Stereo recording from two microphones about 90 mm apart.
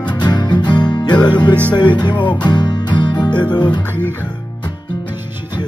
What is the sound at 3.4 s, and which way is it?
Music, 15° left (ahead or behind).